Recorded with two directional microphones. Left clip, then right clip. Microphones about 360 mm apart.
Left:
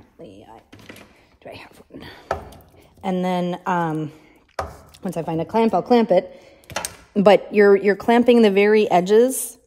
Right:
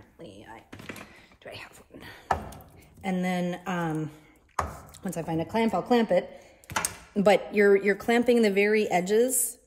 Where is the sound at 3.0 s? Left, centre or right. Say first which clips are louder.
Left 7 dB; centre.